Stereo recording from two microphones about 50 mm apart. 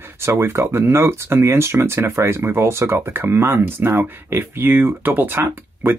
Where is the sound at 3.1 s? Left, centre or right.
Right.